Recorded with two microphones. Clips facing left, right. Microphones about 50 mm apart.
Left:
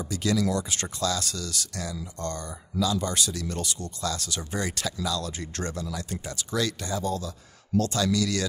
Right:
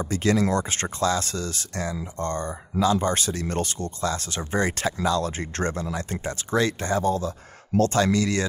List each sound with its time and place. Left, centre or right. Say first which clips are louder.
0.0 s speech: right 4 dB; right